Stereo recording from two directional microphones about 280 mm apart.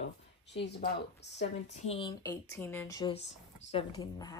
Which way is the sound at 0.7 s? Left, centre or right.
Left.